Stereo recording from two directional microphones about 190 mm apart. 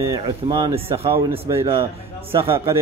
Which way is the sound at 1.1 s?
15° right (ahead or behind).